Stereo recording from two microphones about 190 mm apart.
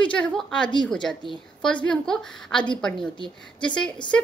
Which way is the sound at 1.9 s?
5° left (ahead or behind).